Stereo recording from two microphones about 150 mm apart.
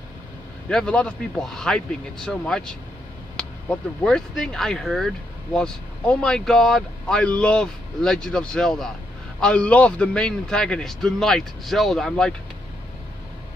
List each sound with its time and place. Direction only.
0.7 s speech: 5° left (ahead or behind)
4.0 s speech: 5° left (ahead or behind)